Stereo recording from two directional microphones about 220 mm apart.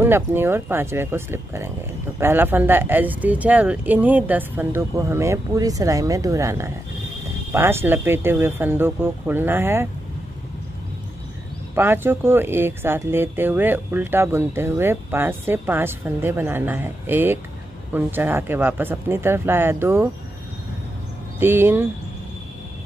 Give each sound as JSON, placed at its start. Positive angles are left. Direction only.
{"t": 0.0, "sound": "speech", "side_deg": -10}
{"t": 11.7, "sound": "speech", "side_deg": -10}
{"t": 21.4, "sound": "speech", "side_deg": -10}